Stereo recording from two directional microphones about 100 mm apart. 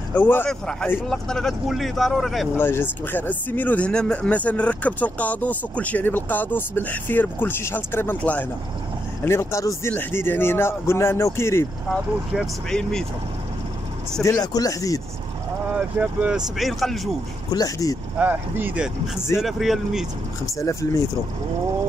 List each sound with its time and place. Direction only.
0.1 s speech: 20° left (ahead or behind)
0.5 s speech: 5° left (ahead or behind)
2.5 s speech: 20° left (ahead or behind)
9.2 s speech: 25° left (ahead or behind)
12.6 s speech: 5° left (ahead or behind)
14.2 s speech: 35° left (ahead or behind)
15.7 s speech: 15° right (ahead or behind)
16.5 s speech: centre (ahead or behind)
17.5 s speech: 40° left (ahead or behind)
18.1 s speech: 15° right (ahead or behind)
19.4 s speech: centre (ahead or behind)
20.4 s speech: 30° left (ahead or behind)